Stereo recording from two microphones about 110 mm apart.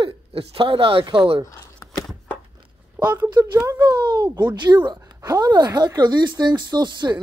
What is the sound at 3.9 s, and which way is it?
Speech, 40° right (ahead or behind).